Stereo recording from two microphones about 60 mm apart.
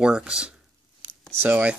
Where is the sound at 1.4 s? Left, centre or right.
Right.